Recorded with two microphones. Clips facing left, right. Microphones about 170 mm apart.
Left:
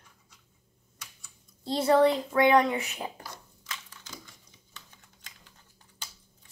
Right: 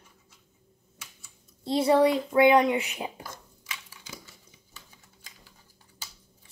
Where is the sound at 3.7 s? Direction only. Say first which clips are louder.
Even; 10° right (ahead or behind).